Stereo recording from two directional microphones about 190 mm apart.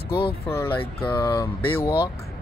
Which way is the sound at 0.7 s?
25° left (ahead or behind).